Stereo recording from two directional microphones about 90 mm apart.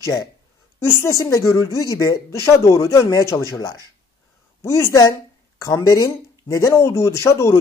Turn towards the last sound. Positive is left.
turn(degrees=35)  # may be behind; listen again after turning